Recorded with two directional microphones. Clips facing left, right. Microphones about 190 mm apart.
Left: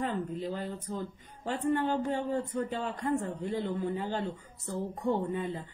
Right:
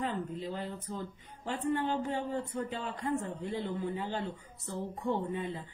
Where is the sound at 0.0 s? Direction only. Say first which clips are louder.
Left 2 dB; 45° left (ahead or behind).